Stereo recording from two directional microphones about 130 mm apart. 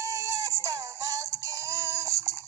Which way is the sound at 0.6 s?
25° right (ahead or behind).